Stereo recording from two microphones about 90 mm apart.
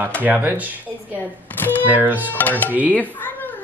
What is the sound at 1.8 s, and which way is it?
Speech, 20° right (ahead or behind).